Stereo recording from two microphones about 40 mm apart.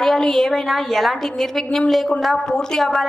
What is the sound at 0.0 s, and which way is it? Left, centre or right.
A woman's voice, centre.